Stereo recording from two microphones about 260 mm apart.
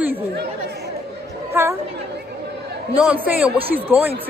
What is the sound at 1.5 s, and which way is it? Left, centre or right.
Chatter, centre.